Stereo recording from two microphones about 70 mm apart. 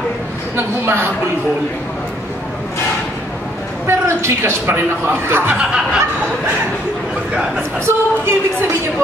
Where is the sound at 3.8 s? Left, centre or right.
Right.